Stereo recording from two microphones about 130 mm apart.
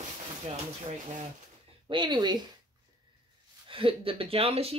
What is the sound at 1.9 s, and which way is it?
Speech, 35° right (ahead or behind).